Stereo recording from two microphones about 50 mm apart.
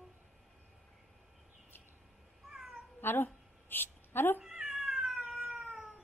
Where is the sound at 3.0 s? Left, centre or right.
Left.